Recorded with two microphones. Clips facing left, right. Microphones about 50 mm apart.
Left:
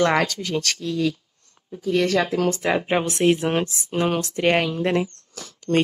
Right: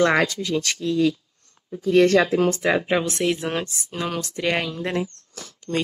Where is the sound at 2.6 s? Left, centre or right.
Centre.